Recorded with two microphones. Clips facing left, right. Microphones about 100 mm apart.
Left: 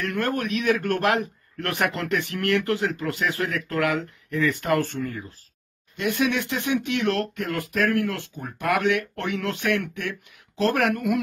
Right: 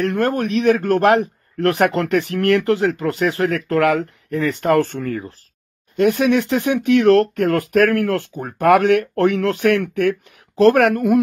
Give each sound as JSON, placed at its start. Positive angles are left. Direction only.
{"t": 0.0, "sound": "a man's voice", "side_deg": -35}